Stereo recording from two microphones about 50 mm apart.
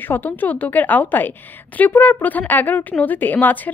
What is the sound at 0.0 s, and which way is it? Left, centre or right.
A woman's voice, left.